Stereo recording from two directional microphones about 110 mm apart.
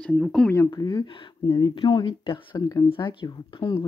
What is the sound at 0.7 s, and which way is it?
Speech, 35° left (ahead or behind).